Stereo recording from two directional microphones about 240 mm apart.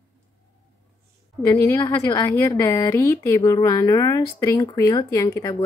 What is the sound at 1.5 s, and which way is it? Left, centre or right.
A woman's voice, centre.